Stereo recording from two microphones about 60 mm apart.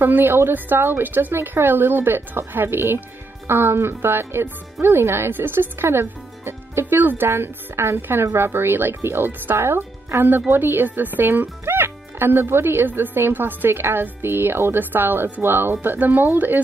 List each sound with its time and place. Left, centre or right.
0.0 s speech: right